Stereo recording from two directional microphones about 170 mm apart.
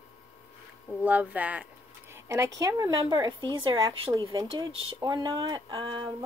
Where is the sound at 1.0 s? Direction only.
10° right (ahead or behind).